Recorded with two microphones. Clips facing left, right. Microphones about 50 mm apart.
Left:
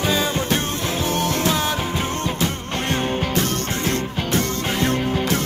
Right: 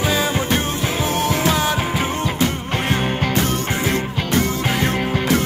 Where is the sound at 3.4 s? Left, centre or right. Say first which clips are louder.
Right 2 dB; centre.